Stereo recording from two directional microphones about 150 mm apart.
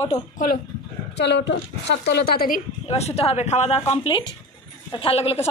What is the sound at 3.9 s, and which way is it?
A woman's voice, 35° left (ahead or behind).